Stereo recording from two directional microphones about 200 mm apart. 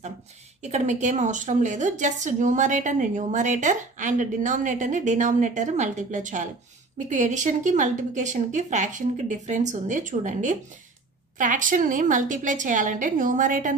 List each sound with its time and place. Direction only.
0.6 s a woman's voice: 35° right (ahead or behind)